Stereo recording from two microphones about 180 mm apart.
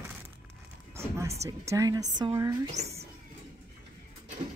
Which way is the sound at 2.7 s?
35° right (ahead or behind).